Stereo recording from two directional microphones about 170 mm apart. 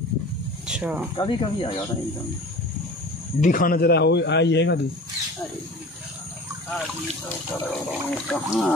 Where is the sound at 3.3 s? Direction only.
50° left (ahead or behind); by 4.7 s 90° left.